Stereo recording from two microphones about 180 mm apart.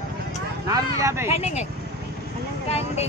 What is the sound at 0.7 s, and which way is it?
Speech, 20° right (ahead or behind).